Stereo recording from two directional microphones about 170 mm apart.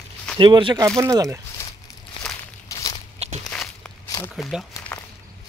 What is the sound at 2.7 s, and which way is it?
Walk, 20° left (ahead or behind).